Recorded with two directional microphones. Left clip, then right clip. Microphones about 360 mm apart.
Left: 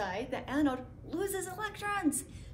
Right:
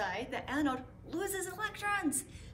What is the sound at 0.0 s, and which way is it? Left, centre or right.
A woman's voice, centre.